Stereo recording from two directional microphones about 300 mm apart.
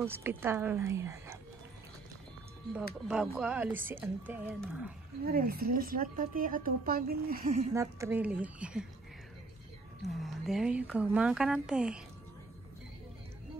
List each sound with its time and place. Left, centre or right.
0.0 s a woman's voice: centre
3.1 s speech: centre
5.2 s speech: right
7.7 s speech: centre
10.0 s speech: centre